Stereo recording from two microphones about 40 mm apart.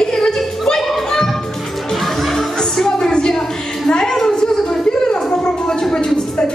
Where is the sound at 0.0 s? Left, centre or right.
Centre.